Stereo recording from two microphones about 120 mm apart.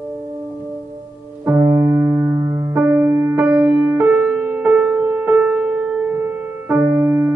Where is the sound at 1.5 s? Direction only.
25° right (ahead or behind).